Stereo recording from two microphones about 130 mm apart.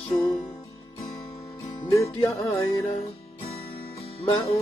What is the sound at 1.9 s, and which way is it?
Music, 25° left (ahead or behind).